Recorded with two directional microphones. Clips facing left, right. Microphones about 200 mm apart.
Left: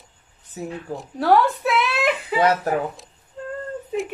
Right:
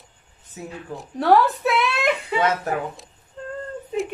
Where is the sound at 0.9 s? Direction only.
Centre (ahead or behind).